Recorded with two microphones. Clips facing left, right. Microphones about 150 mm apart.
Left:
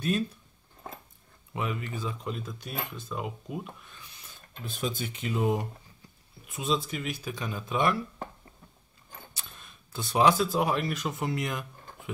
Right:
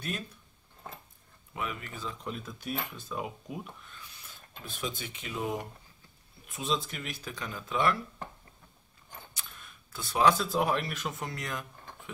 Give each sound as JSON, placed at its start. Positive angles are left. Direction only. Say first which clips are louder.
{"t": 1.5, "sound": "speech", "louder": "left 4 dB", "side_deg": 25}
{"t": 2.2, "sound": "speech", "louder": "left 1 dB", "side_deg": 0}
{"t": 4.6, "sound": "speech", "louder": "left 5 dB", "side_deg": 35}
{"t": 5.3, "sound": "speech", "louder": "left 6 dB", "side_deg": 25}
{"t": 6.5, "sound": "speech", "louder": "left 3 dB", "side_deg": 0}
{"t": 7.2, "sound": "speech", "louder": "left 4 dB", "side_deg": 15}
{"t": 9.3, "sound": "camera", "louder": "left 1 dB", "side_deg": 30}
{"t": 10.3, "sound": "speech", "louder": "left 2 dB", "side_deg": 0}
{"t": 11.3, "sound": "speech", "louder": "left 5 dB", "side_deg": 15}